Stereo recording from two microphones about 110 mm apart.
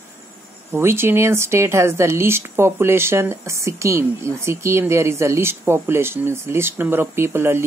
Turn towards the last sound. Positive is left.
turn(degrees=-20)  # may be behind; listen again after turning